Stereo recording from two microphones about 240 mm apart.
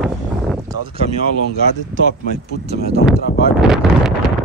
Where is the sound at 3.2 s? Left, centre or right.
Left.